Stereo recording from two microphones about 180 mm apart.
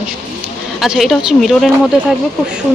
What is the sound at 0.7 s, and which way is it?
Speech, centre (ahead or behind).